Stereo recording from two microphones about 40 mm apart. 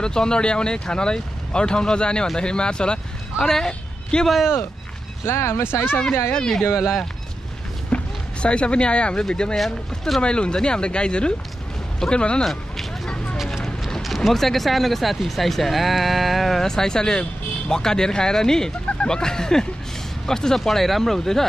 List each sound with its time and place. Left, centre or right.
0.0 s speech: centre
5.2 s speech: left
6.3 s speech: centre
6.7 s speech: centre
7.9 s a sound: left
9.3 s speech: left
9.6 s speech: centre
10.2 s speech: left
12.4 s a sound: centre
13.1 s vehicle: left
14.0 s speech: centre
16.6 s speech: centre